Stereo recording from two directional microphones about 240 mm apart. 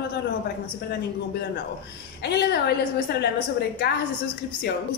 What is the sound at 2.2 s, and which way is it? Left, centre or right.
Speech, left.